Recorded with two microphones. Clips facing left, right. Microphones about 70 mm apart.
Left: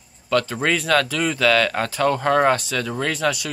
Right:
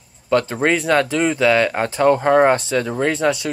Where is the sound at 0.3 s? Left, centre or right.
Right.